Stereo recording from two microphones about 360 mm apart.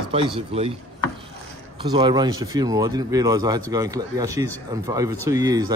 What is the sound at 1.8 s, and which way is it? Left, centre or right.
Speech, centre.